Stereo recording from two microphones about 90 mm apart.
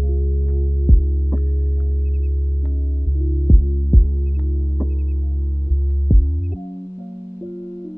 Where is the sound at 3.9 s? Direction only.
Centre (ahead or behind).